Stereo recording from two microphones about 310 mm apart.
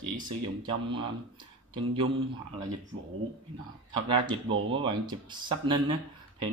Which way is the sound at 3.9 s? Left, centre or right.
Centre.